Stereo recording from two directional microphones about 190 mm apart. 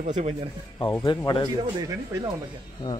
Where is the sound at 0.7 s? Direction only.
20° left (ahead or behind).